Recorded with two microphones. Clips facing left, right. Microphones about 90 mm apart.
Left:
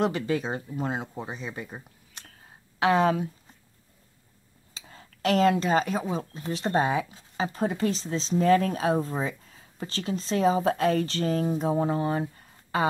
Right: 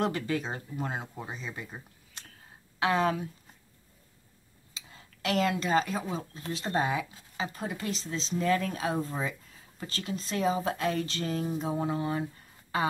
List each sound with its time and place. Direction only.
0.0 s speech: 20° left (ahead or behind)
2.8 s speech: 25° left (ahead or behind)
4.7 s speech: 40° left (ahead or behind)